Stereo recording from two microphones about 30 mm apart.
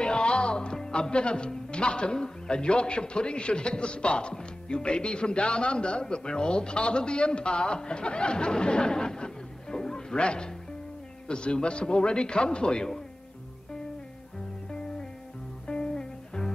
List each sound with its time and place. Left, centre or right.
0.0 s music: left
1.7 s a man's voice: left
10.1 s a man's voice: left
15.6 s music: left